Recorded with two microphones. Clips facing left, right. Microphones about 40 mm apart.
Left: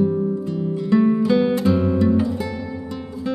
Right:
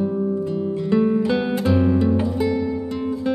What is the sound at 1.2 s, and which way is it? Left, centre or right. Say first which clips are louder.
Music: left 3 dB; centre.